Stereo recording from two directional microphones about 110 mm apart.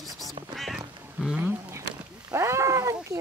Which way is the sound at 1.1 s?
10° right (ahead or behind).